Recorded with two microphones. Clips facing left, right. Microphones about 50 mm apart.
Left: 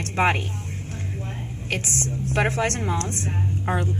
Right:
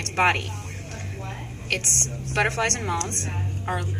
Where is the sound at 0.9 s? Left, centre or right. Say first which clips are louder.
Left 2 dB; right.